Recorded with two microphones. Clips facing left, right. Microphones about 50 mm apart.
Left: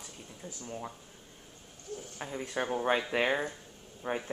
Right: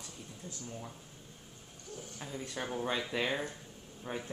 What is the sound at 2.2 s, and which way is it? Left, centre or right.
Speech, left.